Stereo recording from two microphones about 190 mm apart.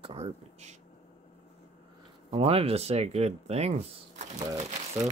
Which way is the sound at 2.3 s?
30° right (ahead or behind).